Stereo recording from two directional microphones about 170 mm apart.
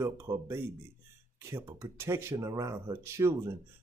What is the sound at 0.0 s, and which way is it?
Speech, 15° right (ahead or behind).